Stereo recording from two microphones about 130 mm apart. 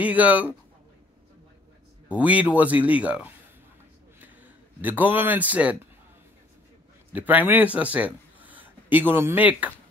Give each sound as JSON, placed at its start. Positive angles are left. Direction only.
{"t": 0.0, "sound": "a man's voice", "side_deg": -10}
{"t": 2.0, "sound": "a man's voice", "side_deg": -10}
{"t": 4.8, "sound": "a man's voice", "side_deg": -15}
{"t": 7.1, "sound": "speech", "side_deg": -10}